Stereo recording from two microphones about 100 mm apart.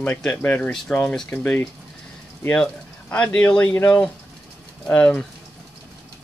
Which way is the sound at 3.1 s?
15° left (ahead or behind).